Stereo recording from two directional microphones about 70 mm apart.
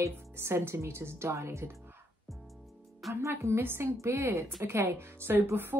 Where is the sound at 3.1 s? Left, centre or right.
Right.